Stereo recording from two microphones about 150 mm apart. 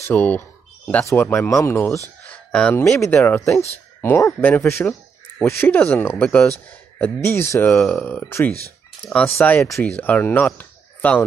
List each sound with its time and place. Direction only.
0.0 s speech: 10° left (ahead or behind)
2.2 s a sound: 5° left (ahead or behind)
3.0 s speech: 15° left (ahead or behind)
7.7 s speech: 5° left (ahead or behind)
8.2 s speech: 15° left (ahead or behind)